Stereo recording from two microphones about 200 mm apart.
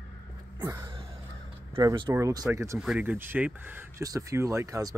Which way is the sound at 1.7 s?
20° right (ahead or behind).